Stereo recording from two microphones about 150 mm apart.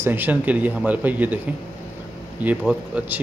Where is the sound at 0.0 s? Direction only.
10° right (ahead or behind).